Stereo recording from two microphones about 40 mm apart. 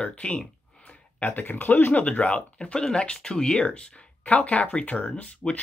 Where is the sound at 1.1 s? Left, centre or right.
Left.